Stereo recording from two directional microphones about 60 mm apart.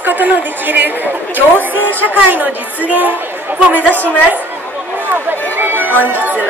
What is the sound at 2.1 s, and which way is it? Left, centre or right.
Speech, right.